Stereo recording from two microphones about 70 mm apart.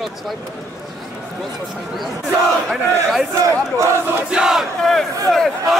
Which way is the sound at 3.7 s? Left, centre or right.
Right.